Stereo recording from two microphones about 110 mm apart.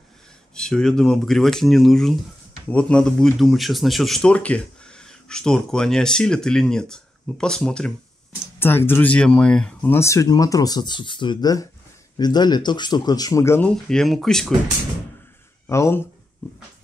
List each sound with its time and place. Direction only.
0.6 s speech: 5° left (ahead or behind)
8.5 s speech: 20° left (ahead or behind)
9.8 s speech: 25° left (ahead or behind)
13.6 s speech: 10° left (ahead or behind)
15.7 s speech: 25° left (ahead or behind)